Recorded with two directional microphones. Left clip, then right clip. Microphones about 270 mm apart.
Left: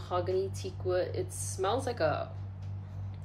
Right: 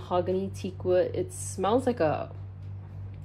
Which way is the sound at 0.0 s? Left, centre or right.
Centre.